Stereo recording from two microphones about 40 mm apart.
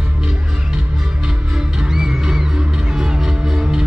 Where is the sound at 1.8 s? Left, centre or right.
Centre.